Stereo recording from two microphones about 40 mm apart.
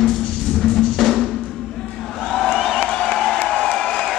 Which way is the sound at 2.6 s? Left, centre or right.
Centre.